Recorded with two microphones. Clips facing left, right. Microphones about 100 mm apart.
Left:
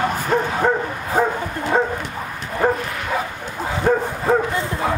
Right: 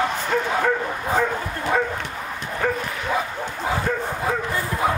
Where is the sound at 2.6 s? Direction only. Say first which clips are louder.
Left 5 dB; 30° left (ahead or behind).